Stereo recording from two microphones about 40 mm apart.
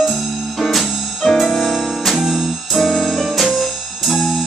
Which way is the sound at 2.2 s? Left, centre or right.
Centre.